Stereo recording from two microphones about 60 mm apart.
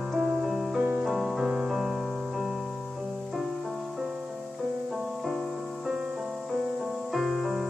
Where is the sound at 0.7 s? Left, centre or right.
Right.